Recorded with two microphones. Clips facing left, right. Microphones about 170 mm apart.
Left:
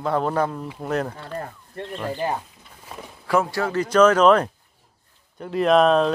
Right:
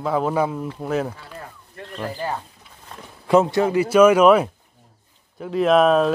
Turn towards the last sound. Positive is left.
turn(degrees=-5)  # may be behind; listen again after turning